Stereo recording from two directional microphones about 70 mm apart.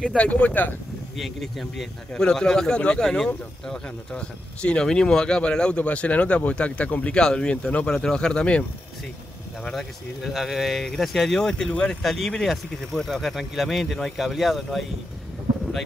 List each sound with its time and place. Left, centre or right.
0.0 s speech: centre
1.1 s speech: centre
9.7 s speech: centre
12.0 s speech: centre